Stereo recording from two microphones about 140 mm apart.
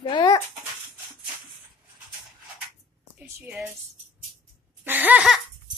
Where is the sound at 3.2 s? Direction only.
10° right (ahead or behind).